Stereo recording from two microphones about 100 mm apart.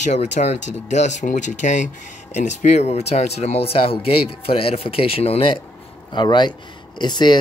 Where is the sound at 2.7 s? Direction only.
90° left.